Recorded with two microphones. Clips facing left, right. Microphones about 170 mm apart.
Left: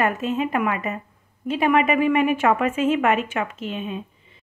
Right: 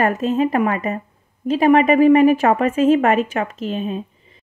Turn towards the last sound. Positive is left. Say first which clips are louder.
# right 5 dB
turn(degrees=-35)  # may be behind; listen again after turning